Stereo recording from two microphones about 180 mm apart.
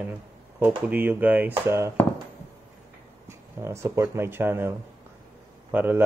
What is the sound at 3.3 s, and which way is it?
Speech, 15° right (ahead or behind).